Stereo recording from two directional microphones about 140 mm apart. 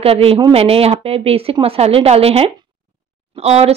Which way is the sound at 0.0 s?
45° right (ahead or behind).